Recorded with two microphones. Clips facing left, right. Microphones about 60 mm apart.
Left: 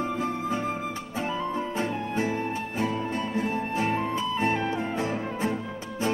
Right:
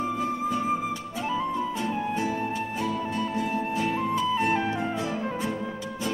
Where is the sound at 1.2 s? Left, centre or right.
Left.